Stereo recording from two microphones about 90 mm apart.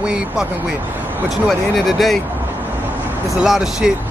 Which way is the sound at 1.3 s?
Centre (ahead or behind).